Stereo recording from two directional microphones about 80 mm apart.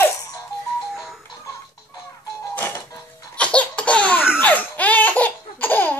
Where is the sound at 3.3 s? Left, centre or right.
Centre.